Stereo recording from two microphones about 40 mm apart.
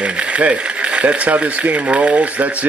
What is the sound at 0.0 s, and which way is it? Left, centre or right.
Speech, right.